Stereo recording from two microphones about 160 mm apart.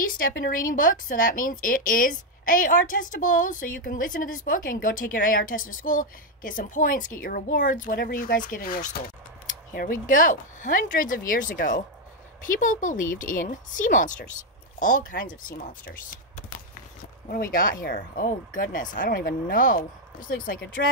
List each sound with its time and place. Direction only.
0.0 s a woman's voice: 60° left (ahead or behind)